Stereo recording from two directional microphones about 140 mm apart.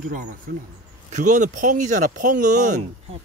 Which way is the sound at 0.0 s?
75° right (ahead or behind).